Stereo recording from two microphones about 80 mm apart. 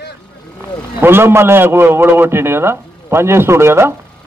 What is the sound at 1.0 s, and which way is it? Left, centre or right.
A man's voice, right.